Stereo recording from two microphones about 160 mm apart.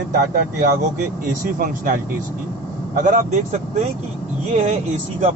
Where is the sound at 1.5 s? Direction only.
55° right (ahead or behind).